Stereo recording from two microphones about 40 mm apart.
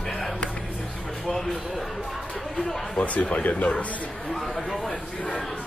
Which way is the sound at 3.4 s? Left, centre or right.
Left.